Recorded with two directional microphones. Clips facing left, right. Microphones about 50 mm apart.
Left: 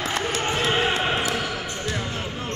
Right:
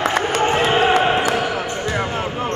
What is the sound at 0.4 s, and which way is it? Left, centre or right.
Basketball bounce, right.